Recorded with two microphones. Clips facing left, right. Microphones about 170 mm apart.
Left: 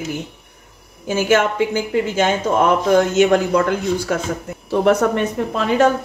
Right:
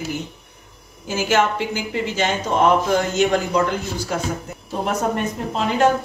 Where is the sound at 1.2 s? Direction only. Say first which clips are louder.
Left 3 dB; 55° left (ahead or behind).